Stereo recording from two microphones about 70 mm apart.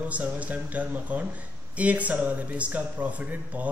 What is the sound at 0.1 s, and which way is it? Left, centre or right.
Speech, centre.